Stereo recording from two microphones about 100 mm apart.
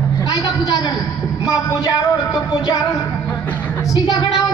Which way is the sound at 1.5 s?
35° left (ahead or behind).